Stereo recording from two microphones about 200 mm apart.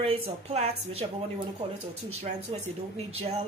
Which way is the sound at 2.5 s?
25° right (ahead or behind).